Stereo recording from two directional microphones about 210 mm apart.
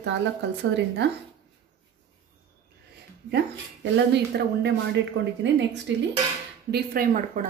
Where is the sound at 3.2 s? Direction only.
55° right (ahead or behind).